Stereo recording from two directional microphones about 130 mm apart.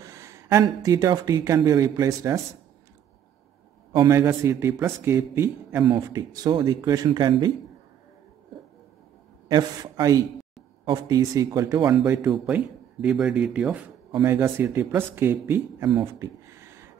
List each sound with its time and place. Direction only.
0.0 s speech: 25° right (ahead or behind)
3.9 s a man's voice: 30° right (ahead or behind)
5.9 s speech: 30° right (ahead or behind)
9.5 s a man's voice: 30° right (ahead or behind)
12.3 s speech: 10° right (ahead or behind)
14.2 s a man's voice: 20° right (ahead or behind)